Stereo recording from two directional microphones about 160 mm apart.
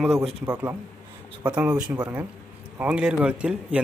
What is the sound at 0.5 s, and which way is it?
Speech, 15° right (ahead or behind).